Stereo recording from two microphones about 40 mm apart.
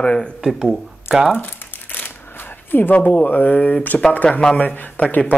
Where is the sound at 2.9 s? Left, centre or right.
Left.